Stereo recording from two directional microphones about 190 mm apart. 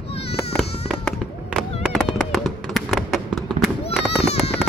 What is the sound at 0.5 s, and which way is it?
Fireworks, centre (ahead or behind).